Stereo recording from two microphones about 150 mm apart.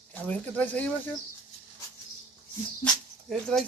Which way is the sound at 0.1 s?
10° left (ahead or behind).